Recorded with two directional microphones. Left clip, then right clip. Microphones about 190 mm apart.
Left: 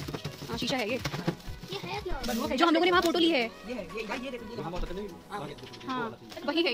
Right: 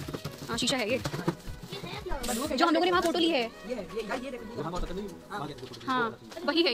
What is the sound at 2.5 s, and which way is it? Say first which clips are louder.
Speech: left 1 dB; 25° left (ahead or behind).